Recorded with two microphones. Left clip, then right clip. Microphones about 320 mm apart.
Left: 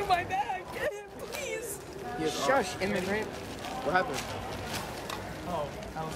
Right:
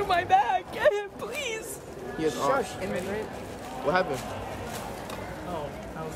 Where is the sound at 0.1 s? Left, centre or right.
Centre.